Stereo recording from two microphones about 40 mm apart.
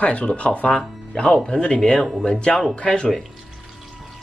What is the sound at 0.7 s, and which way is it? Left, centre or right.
Speech, centre.